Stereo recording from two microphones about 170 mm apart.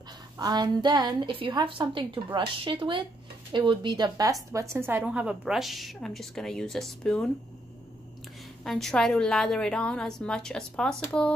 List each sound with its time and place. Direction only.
0.4 s a woman's voice: 25° right (ahead or behind); by 7.2 s 5° left (ahead or behind)
8.6 s a woman's voice: centre (ahead or behind)